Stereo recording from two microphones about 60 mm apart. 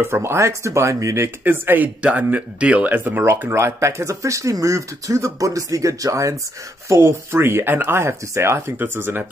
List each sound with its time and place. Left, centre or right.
0.0 s speech: right
1.4 s speech: right
3.4 s speech: right
6.9 s speech: right
8.7 s speech: right